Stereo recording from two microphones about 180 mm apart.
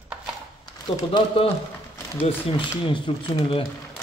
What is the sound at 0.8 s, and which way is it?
Speech, 30° left (ahead or behind).